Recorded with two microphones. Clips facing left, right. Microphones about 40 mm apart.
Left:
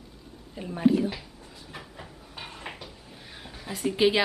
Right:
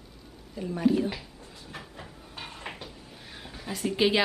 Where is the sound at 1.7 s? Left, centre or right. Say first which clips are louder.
Even; centre.